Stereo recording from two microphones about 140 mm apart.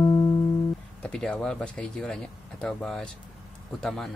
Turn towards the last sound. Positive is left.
turn(degrees=0)  # may be behind; listen again after turning